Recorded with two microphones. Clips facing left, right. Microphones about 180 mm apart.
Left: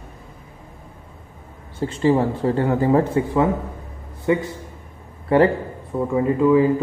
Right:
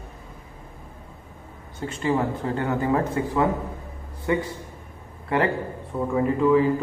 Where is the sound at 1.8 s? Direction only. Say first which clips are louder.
Left 6 dB; 30° left (ahead or behind).